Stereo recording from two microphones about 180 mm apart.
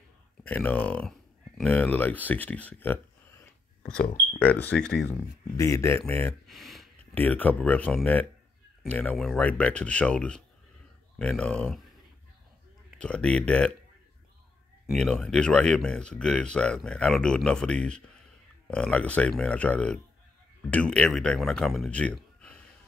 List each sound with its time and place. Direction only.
0.4 s speech: 10° left (ahead or behind)
4.0 s speech: 45° left (ahead or behind)
4.4 s speech: 10° left (ahead or behind)
5.6 s speech: 15° left (ahead or behind)
6.4 s speech: centre (ahead or behind)
13.0 s speech: 5° left (ahead or behind)
14.9 s speech: centre (ahead or behind)